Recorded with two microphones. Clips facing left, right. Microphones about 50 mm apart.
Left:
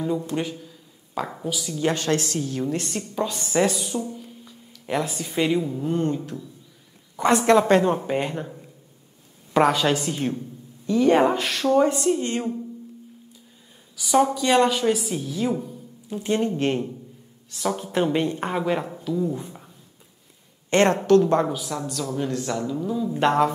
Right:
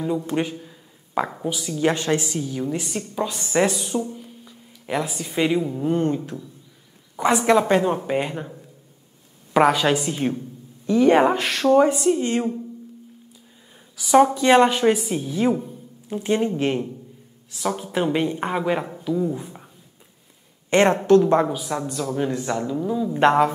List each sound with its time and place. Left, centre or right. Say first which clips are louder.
0.3 s a sound: right 3 dB; centre
1.4 s speech: even; centre
3.9 s a woman's voice: right 3 dB; right
4.2 s a sound: even; centre
6.1 s a woman's voice: right 2 dB; centre
7.2 s a woman's voice: even; centre
11.3 s speech: right 3 dB; right
11.8 s speech: right 2 dB; centre
13.9 s a woman's voice: right 4 dB; right
16.6 s speech: right 1 dB; centre
20.7 s a woman's voice: right 2 dB; right